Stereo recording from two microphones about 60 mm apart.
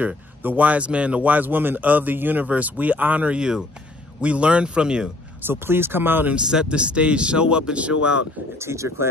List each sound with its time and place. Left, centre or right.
0.4 s speech: right
3.3 s a man's voice: centre
5.5 s speech: right
6.3 s a man's voice: centre
8.5 s speech: right